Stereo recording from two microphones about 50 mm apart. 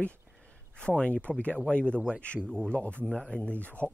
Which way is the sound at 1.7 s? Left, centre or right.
Left.